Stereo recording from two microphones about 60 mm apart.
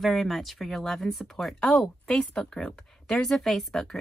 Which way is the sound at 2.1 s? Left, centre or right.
Centre.